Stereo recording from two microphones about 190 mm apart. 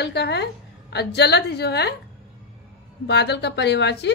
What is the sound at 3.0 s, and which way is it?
A woman's voice, 60° left (ahead or behind).